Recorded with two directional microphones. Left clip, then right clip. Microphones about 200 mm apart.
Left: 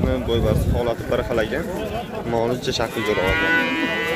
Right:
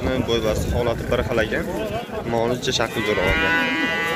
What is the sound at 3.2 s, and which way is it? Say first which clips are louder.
Speech: left 1 dB; 50° left (ahead or behind).